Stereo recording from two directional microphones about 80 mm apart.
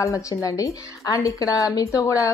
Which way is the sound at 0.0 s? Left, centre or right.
Left.